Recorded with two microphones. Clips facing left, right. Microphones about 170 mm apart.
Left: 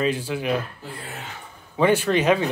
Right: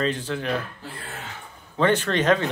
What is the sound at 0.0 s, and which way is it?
Speech, 10° left (ahead or behind).